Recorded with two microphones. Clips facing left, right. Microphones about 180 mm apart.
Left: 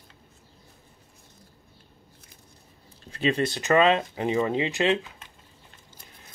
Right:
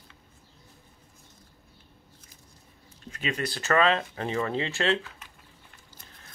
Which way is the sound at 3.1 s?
30° left (ahead or behind).